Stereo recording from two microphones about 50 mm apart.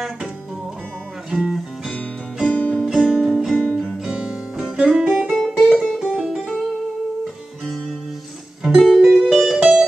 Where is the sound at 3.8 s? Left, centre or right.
Centre.